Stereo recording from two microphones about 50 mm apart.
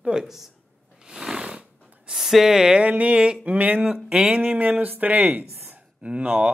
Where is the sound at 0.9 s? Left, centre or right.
Centre.